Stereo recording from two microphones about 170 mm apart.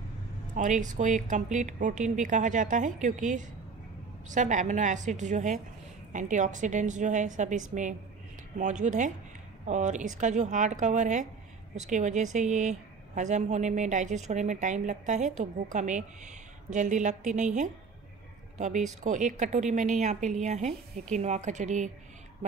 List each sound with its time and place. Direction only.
0.6 s a woman's voice: 45° right (ahead or behind)